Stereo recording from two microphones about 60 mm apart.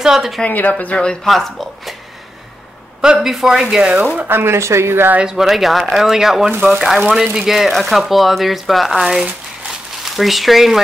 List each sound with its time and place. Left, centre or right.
0.0 s a man's voice: centre
0.5 s speech: left
1.2 s speech: centre
3.0 s a man's voice: centre
4.0 s speech: right
4.3 s speech: right
4.6 s speech: right
5.2 s speech: centre
10.0 s speech: centre